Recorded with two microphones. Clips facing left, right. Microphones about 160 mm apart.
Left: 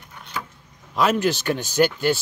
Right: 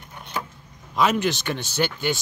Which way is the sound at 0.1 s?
20° right (ahead or behind).